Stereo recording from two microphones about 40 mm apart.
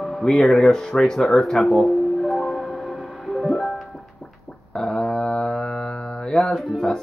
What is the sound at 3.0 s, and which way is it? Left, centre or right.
Music, centre.